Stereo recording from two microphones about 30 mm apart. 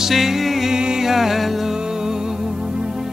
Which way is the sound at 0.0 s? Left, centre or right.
Centre.